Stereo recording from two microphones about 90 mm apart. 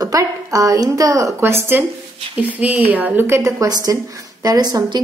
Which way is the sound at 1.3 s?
30° right (ahead or behind).